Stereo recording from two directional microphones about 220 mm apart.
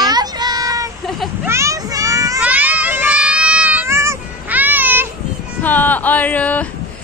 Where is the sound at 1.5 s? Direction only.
15° right (ahead or behind).